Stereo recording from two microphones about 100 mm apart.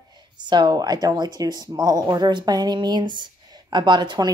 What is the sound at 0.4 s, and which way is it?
Speech, 45° right (ahead or behind).